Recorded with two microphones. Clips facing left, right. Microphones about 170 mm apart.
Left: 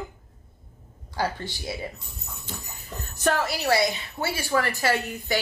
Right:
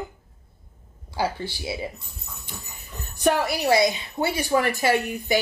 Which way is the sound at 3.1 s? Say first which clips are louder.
Right 3 dB; 15° right (ahead or behind).